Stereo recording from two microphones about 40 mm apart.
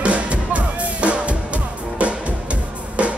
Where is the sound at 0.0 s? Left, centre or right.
Right.